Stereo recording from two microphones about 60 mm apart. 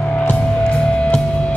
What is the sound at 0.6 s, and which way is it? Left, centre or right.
Music, centre.